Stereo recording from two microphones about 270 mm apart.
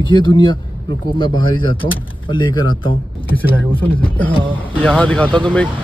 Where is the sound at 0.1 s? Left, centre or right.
Centre.